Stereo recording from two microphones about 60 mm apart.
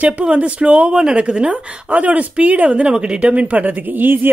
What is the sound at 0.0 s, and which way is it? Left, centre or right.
Speech, right.